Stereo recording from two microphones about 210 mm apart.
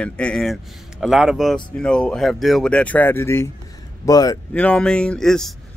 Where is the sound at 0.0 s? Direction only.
5° left (ahead or behind).